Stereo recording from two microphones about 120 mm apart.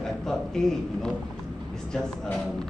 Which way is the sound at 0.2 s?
5° left (ahead or behind).